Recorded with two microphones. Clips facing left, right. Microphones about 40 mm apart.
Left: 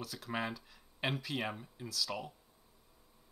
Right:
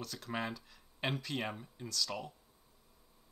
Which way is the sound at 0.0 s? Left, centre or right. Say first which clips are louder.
Left 1 dB; centre.